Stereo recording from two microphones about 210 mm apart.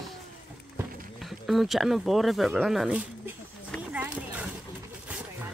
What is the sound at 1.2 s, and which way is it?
Speech, centre (ahead or behind).